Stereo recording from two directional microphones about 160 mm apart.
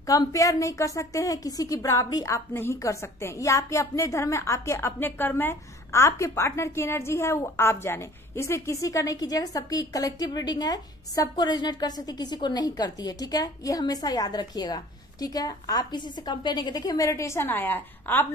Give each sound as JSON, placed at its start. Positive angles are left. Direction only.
{"t": 0.0, "sound": "a woman's voice", "side_deg": 20}